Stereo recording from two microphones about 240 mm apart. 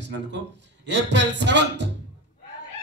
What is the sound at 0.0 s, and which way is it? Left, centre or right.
A man's voice, right.